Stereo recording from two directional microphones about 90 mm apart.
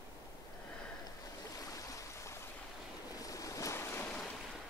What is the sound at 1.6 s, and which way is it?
Stream, 40° left (ahead or behind).